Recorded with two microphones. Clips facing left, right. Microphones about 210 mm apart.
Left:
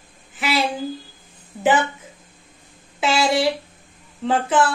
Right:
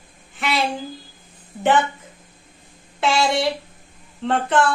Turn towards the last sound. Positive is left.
turn(degrees=0)  # may be behind; listen again after turning